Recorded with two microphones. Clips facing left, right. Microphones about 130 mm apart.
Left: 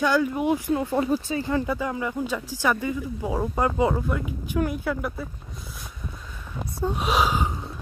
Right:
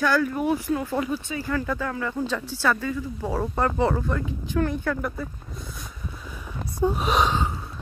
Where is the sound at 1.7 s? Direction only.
15° left (ahead or behind).